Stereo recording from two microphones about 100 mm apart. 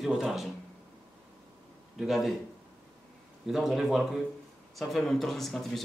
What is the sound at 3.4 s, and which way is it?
Speech, 5° right (ahead or behind).